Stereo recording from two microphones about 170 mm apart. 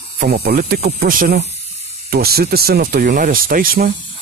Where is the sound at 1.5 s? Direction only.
40° left (ahead or behind).